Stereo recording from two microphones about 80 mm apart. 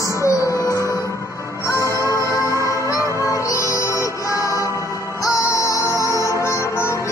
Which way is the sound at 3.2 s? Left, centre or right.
Left.